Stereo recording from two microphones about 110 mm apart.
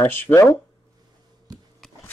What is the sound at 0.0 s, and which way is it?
Speech, 20° left (ahead or behind).